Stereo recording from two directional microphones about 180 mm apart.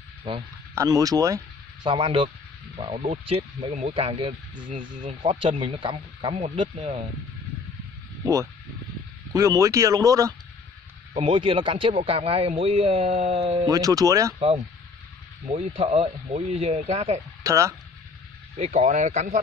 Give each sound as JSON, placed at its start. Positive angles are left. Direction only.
{"t": 0.7, "sound": "speech", "side_deg": -20}
{"t": 4.6, "sound": "speech", "side_deg": -45}
{"t": 5.2, "sound": "a man's voice", "side_deg": -30}
{"t": 9.3, "sound": "speech", "side_deg": -20}
{"t": 11.1, "sound": "a man's voice", "side_deg": -30}
{"t": 13.7, "sound": "speech", "side_deg": -20}
{"t": 15.5, "sound": "a man's voice", "side_deg": -35}
{"t": 17.4, "sound": "speech", "side_deg": -15}
{"t": 18.6, "sound": "a man's voice", "side_deg": -40}